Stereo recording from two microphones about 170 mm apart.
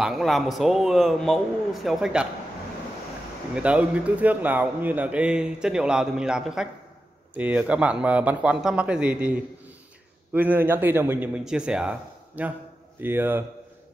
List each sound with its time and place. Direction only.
0.0 s a man's voice: centre (ahead or behind)
3.5 s a man's voice: 5° right (ahead or behind)